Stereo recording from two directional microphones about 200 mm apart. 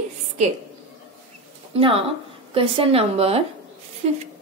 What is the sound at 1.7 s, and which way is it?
A woman's voice, 30° right (ahead or behind).